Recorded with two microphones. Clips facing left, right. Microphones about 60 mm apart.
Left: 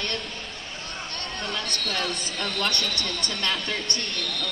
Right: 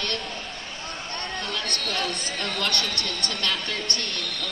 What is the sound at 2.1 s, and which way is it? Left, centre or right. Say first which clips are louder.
Speech: right 1 dB; right.